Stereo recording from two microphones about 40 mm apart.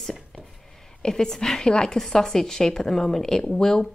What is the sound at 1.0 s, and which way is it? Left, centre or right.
A woman's voice, centre.